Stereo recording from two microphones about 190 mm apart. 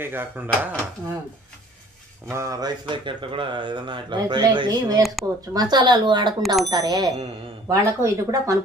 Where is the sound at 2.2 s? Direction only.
15° right (ahead or behind).